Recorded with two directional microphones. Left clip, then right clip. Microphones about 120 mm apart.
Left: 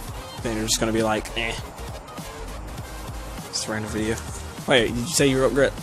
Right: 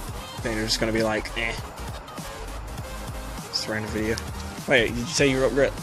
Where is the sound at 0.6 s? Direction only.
20° left (ahead or behind).